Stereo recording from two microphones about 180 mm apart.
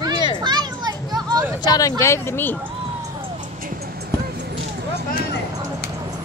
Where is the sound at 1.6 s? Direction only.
20° left (ahead or behind).